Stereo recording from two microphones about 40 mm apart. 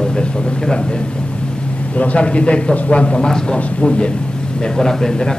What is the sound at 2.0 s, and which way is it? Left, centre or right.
A man's voice, left.